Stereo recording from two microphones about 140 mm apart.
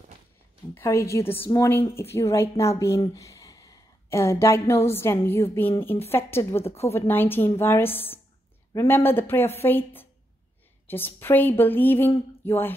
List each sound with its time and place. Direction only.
0.7 s a woman's voice: 20° left (ahead or behind)